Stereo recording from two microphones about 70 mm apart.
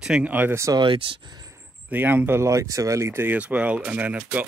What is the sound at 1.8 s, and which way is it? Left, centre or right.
Speech, right.